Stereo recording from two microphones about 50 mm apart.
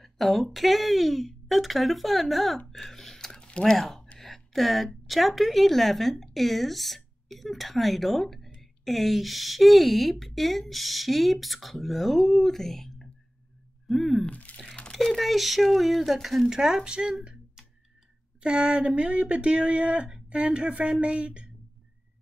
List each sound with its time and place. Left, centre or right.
0.0 s speech: centre
2.7 s a sound: centre
3.3 s a sound: left
3.7 s a woman's voice: centre
14.3 s crumpling: left
14.9 s speech: centre
18.4 s speech: centre